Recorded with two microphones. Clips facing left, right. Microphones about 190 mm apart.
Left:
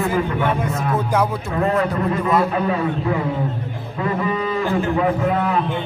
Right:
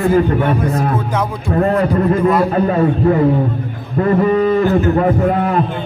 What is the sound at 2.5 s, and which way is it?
A man's voice, 45° right (ahead or behind).